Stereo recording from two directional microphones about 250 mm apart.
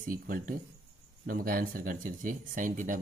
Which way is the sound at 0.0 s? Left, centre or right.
Right.